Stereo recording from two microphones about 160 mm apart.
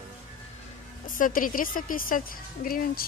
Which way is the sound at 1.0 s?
60° left (ahead or behind).